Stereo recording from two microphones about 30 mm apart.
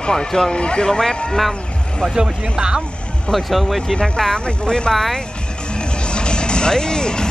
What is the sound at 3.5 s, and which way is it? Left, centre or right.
Speech, centre.